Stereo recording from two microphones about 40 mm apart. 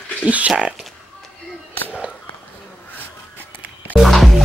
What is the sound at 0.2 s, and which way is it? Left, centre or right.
Speech, right.